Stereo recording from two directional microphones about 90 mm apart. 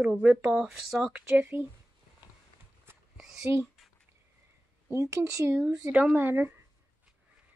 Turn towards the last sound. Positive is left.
turn(degrees=-25)  # may be behind; listen again after turning